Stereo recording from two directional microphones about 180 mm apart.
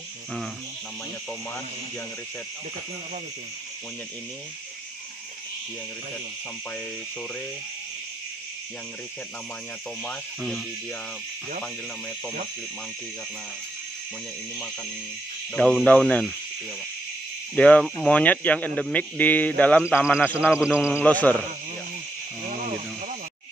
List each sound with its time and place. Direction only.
10.0 s speech: centre (ahead or behind)
15.5 s speech: 5° left (ahead or behind)
17.6 s speech: 5° left (ahead or behind)
20.5 s speech: 5° right (ahead or behind)
21.0 s speech: 10° left (ahead or behind)